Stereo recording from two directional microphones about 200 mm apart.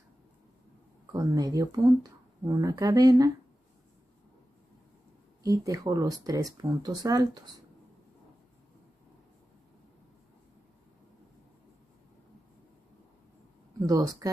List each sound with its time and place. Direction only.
1.1 s speech: 20° right (ahead or behind)
5.4 s speech: 15° right (ahead or behind)
13.7 s speech: 20° right (ahead or behind)